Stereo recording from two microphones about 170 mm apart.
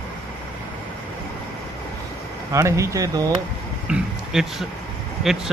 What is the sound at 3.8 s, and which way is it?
Speech, 5° right (ahead or behind).